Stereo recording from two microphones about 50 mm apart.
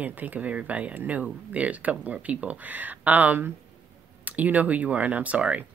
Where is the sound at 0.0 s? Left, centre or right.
Right.